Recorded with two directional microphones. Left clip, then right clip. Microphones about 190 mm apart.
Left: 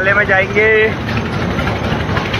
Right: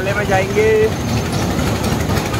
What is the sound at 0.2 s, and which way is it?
Speech, 10° right (ahead or behind).